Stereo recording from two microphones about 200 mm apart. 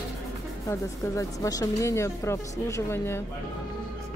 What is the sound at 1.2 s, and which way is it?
Speech, 15° left (ahead or behind).